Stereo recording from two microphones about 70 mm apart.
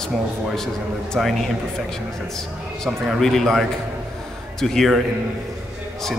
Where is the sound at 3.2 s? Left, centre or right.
Centre.